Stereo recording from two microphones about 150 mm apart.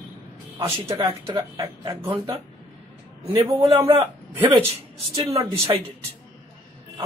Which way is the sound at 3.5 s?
35° right (ahead or behind).